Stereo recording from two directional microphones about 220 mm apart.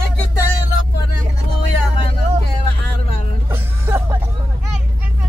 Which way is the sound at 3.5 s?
10° right (ahead or behind).